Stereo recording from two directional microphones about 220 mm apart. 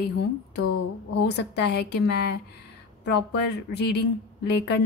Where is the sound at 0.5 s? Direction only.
90° left.